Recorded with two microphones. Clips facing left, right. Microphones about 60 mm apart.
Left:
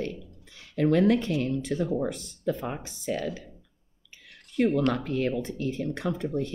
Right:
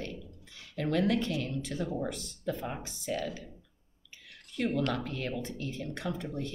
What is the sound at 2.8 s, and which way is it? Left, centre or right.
Speech, left.